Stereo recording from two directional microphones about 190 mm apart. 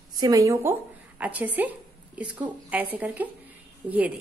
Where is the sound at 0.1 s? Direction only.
20° right (ahead or behind).